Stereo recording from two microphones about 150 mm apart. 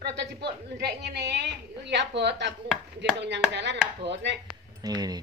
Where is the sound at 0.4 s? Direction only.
90° right.